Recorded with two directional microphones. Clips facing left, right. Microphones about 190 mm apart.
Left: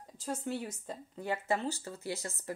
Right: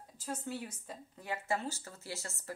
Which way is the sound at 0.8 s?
30° left (ahead or behind).